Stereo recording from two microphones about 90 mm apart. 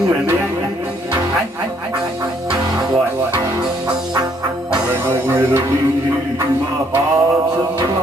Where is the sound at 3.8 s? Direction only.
55° right (ahead or behind).